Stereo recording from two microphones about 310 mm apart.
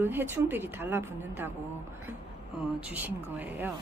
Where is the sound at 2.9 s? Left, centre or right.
Centre.